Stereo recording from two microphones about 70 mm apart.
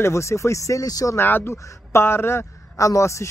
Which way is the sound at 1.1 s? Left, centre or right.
Left.